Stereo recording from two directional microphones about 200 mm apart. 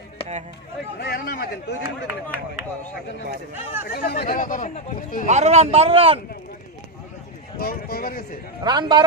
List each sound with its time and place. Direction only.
1.0 s speech: 50° left (ahead or behind)
3.9 s speech: 50° left (ahead or behind)
5.2 s speech: 35° right (ahead or behind)
7.5 s speech: 45° left (ahead or behind)
8.6 s speech: 20° right (ahead or behind)